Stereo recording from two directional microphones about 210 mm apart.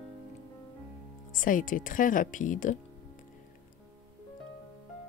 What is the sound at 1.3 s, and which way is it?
Speech, 40° left (ahead or behind).